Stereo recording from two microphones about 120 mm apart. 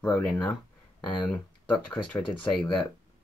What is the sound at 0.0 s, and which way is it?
Speech, 15° left (ahead or behind).